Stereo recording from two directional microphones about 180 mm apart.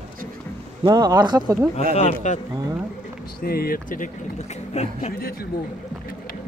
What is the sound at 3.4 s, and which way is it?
Speech, 55° left (ahead or behind).